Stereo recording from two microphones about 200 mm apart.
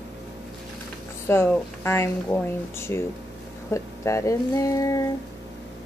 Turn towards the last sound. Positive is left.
turn(degrees=15)  # may be behind; listen again after turning